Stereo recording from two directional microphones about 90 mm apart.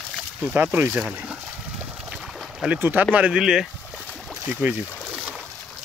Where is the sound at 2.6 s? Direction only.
20° right (ahead or behind).